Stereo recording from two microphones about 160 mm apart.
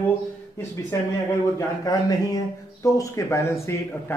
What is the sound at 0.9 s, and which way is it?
Speech, 20° left (ahead or behind).